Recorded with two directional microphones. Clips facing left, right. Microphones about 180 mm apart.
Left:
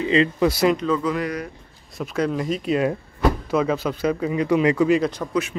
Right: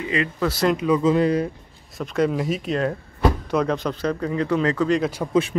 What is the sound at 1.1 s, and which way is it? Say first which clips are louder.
Speech: right 7 dB; 30° right (ahead or behind).